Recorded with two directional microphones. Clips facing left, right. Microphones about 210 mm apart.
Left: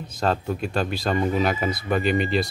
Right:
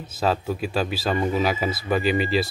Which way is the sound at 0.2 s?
5° right (ahead or behind).